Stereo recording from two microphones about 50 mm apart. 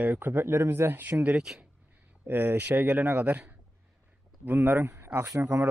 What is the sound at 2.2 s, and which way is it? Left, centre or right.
Speech, right.